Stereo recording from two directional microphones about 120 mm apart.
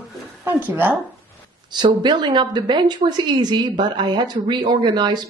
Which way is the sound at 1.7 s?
40° right (ahead or behind).